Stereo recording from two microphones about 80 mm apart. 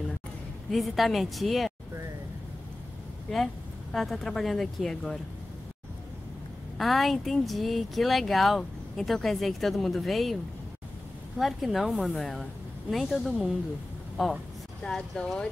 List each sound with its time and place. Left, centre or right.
0.7 s speech: centre
3.9 s speech: centre
6.8 s speech: centre
11.3 s speech: centre
14.8 s speech: centre